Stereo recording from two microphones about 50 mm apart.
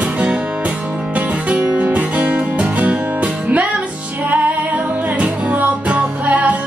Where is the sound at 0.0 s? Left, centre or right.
Right.